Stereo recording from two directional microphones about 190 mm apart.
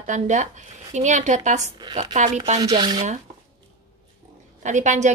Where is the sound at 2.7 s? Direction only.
20° right (ahead or behind).